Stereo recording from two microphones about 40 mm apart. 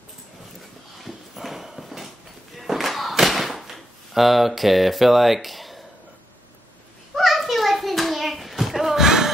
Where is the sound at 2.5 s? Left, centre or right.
Centre.